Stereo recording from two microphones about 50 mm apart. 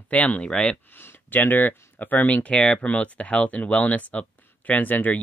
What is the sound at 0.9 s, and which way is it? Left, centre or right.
Speech, left.